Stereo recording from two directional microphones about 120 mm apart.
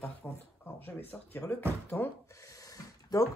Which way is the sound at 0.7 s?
20° left (ahead or behind).